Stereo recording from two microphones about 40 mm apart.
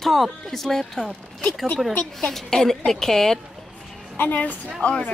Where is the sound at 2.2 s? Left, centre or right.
Centre.